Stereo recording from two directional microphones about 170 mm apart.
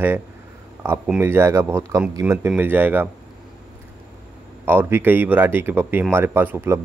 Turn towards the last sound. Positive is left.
turn(degrees=-15)  # may be behind; listen again after turning